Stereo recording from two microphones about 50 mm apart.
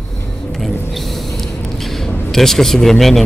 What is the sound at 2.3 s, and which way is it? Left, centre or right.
Speech, centre.